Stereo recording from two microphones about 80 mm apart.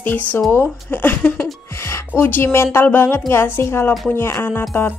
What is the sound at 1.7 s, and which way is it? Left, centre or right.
Music, left.